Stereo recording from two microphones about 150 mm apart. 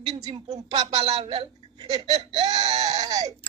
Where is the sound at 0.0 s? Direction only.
30° right (ahead or behind).